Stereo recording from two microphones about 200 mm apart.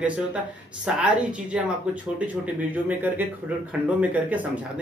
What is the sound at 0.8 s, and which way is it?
A woman's voice, 5° right (ahead or behind).